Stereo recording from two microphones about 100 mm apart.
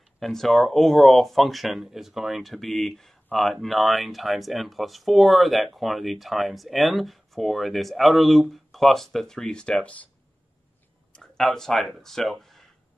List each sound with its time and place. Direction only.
0.2 s speech: centre (ahead or behind)
11.1 s speech: 5° left (ahead or behind)